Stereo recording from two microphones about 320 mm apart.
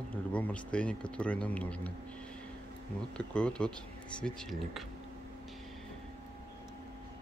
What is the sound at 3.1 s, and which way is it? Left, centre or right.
Speech, centre.